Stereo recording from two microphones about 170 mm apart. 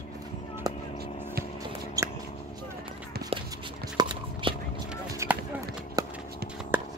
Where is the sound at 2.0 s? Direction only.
20° right (ahead or behind).